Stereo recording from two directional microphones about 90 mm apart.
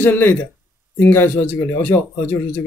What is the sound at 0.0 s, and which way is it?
A man's voice, 20° left (ahead or behind).